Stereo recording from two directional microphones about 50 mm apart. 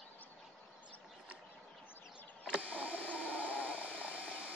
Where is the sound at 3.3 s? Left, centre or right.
Right.